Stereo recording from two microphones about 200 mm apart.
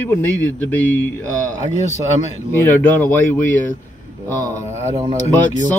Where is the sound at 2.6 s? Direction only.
10° left (ahead or behind).